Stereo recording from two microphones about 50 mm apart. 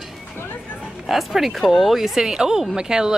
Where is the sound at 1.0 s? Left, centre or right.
Centre.